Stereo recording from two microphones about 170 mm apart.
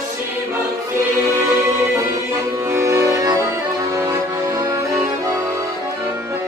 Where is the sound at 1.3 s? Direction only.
15° right (ahead or behind).